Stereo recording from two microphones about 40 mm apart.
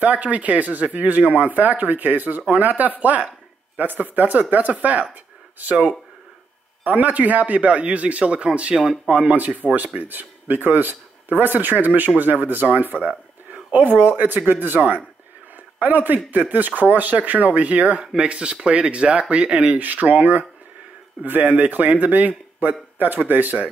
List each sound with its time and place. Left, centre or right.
0.0 s speech: right
8.8 s speech: centre
9.1 s speech: right
9.9 s speech: right
13.5 s a sound: right
13.8 s speech: right
15.8 s speech: right
18.0 s speech: right
21.5 s speech: right